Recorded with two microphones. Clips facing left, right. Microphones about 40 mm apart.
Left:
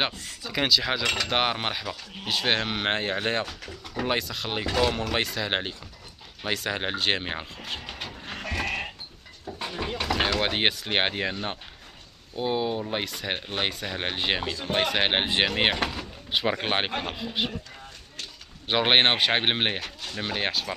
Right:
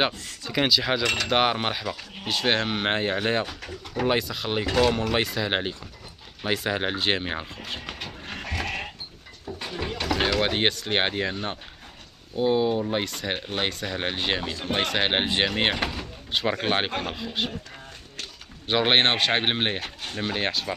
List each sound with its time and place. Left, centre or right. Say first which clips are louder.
0.0 s speech: right 3 dB; centre
9.7 s a sound: right 1 dB; centre
10.1 s speech: right 2 dB; centre
12.4 s speech: right 5 dB; centre
15.8 s door: even; centre
16.3 s speech: right 1 dB; centre
18.7 s speech: even; centre
19.8 s a sound: right 2 dB; right
20.2 s speech: right 1 dB; centre